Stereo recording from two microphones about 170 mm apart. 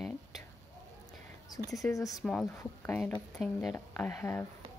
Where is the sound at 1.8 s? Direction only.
20° left (ahead or behind).